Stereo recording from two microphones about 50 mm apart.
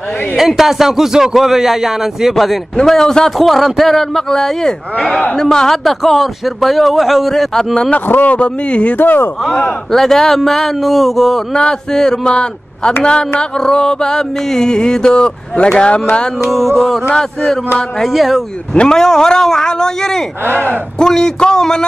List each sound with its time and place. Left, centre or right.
0.4 s a man's voice: centre
8.1 s a man's voice: left
8.4 s speech: left
8.9 s a man's voice: left
9.8 s a man's voice: centre
16.4 s a man's voice: centre
18.0 s a man's voice: centre
18.7 s a man's voice: centre